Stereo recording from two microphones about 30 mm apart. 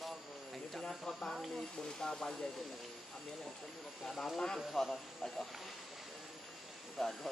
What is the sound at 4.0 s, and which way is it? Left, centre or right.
Speech, centre.